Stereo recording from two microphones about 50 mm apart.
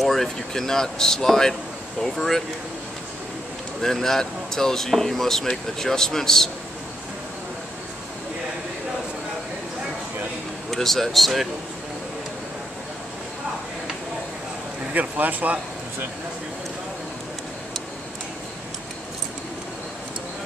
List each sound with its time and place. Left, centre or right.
0.0 s speech: centre
3.8 s speech: centre
10.7 s speech: centre
15.0 s speech: right